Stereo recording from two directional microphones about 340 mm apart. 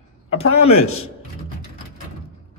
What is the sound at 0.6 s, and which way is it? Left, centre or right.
Speech, left.